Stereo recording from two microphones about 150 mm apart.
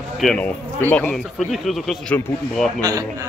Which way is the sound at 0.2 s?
5° left (ahead or behind).